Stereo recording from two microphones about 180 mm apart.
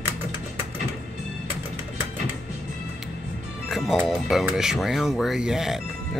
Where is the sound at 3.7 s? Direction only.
Centre (ahead or behind).